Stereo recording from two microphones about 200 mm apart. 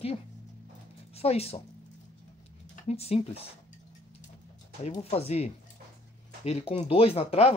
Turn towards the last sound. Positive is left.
turn(degrees=30)  # may be behind; listen again after turning